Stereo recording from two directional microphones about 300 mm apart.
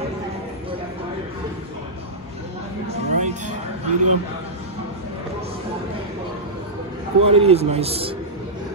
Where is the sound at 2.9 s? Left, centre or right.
Right.